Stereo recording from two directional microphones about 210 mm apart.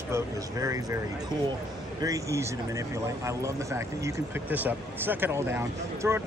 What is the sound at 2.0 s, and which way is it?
Speech, 15° right (ahead or behind).